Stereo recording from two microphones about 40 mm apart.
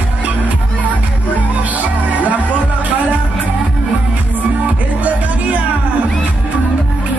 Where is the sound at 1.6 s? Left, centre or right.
Right.